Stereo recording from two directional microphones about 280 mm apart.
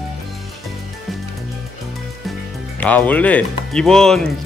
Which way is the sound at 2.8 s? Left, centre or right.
Centre.